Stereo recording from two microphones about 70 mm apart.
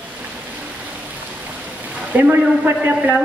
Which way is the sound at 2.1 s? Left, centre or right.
Right.